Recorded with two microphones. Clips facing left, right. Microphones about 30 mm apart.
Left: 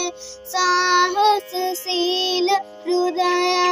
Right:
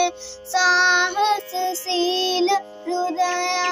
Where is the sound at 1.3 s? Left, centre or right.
Left.